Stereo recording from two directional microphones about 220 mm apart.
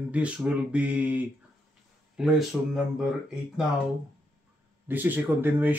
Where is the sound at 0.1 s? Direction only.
5° right (ahead or behind).